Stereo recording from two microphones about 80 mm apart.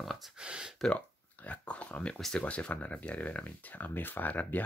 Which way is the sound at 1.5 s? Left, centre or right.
Centre.